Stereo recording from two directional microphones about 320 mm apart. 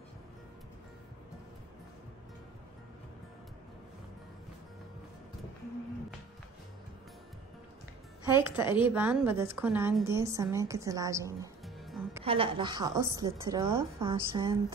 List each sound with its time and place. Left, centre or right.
8.3 s a woman's voice: centre
12.2 s a woman's voice: centre